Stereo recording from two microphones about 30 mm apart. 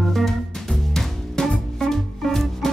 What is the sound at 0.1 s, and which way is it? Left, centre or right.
Music, centre.